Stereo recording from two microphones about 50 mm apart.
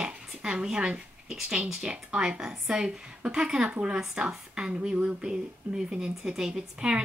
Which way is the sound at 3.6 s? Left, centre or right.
Right.